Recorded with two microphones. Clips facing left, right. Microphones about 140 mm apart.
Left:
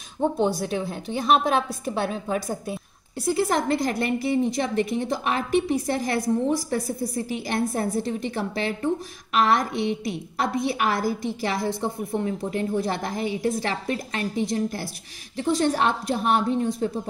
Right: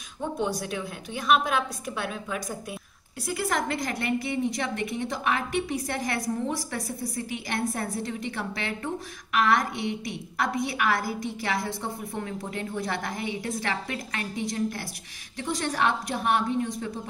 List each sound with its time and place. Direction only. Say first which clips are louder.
0.4 s a woman's voice: left 5 dB; 30° left (ahead or behind)